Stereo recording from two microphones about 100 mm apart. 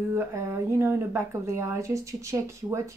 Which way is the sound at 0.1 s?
30° right (ahead or behind).